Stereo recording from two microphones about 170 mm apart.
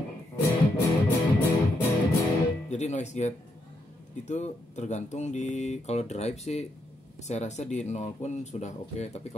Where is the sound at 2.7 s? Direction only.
40° left (ahead or behind).